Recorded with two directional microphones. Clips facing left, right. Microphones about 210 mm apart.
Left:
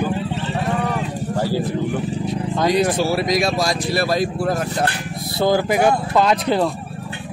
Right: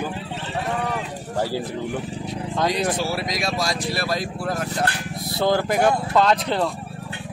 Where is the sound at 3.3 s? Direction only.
40° left (ahead or behind).